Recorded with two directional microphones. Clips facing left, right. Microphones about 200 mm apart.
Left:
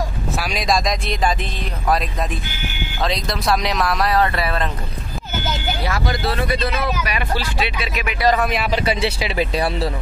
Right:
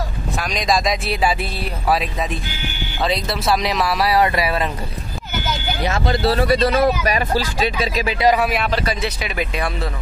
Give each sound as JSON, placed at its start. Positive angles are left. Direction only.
{"t": 0.4, "sound": "speech", "side_deg": 5}
{"t": 3.0, "sound": "speech", "side_deg": -5}
{"t": 5.9, "sound": "speech", "side_deg": -25}
{"t": 8.2, "sound": "speech", "side_deg": -10}
{"t": 8.8, "sound": "a man's voice", "side_deg": 30}